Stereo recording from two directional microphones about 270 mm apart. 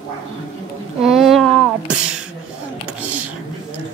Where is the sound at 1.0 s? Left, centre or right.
Centre.